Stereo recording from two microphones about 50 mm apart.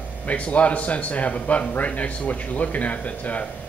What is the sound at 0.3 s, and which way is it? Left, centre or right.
Speech, left.